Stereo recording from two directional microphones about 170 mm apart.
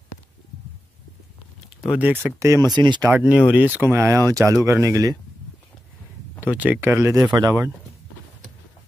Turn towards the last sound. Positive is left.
turn(degrees=-20)  # may be behind; listen again after turning